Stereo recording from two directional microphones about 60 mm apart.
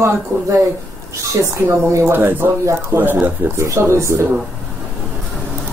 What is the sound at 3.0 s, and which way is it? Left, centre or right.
Speech, right.